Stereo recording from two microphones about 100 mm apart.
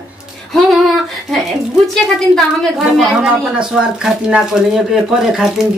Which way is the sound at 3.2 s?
10° right (ahead or behind).